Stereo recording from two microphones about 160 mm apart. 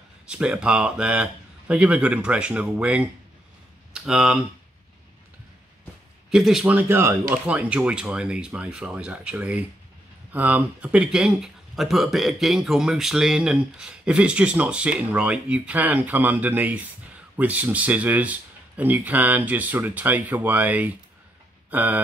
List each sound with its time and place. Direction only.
0.3 s speech: 5° right (ahead or behind)
6.3 s speech: centre (ahead or behind)